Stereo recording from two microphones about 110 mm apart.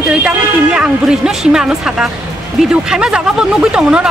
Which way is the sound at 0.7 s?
5° right (ahead or behind).